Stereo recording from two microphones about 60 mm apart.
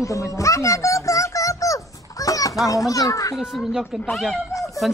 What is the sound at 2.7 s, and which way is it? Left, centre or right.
Speech, left.